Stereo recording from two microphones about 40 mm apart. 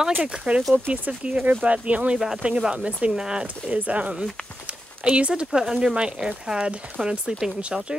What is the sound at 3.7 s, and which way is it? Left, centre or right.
Speech, right.